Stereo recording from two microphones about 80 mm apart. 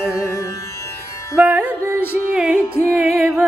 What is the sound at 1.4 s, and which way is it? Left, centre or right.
Music, right.